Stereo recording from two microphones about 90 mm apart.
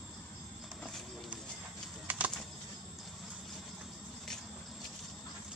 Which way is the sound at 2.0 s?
15° right (ahead or behind).